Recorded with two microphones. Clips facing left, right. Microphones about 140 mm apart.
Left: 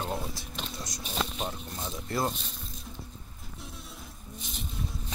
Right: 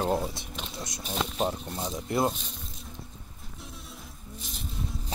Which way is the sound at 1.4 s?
30° right (ahead or behind).